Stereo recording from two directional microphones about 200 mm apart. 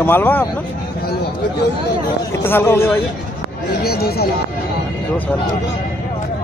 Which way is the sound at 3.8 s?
50° left (ahead or behind).